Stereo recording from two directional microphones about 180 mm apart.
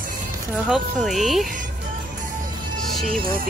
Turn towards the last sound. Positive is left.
turn(degrees=-55)  # may be behind; listen again after turning